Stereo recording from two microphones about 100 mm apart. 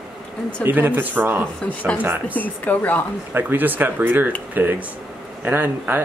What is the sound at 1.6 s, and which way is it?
Speech, 15° left (ahead or behind).